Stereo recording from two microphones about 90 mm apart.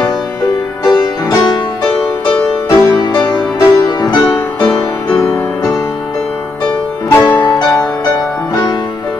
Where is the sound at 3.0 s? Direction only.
50° left (ahead or behind).